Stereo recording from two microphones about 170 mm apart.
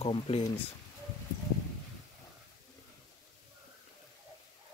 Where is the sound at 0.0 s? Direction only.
35° left (ahead or behind).